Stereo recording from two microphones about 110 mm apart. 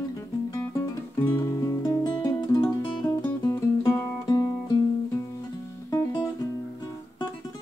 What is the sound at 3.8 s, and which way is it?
Music, 30° left (ahead or behind).